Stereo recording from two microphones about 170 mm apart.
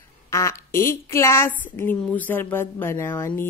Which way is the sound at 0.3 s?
15° left (ahead or behind).